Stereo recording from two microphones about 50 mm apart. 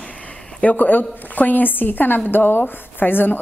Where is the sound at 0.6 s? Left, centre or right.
Left.